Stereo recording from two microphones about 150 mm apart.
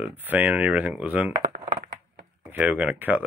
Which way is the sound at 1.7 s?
70° right (ahead or behind).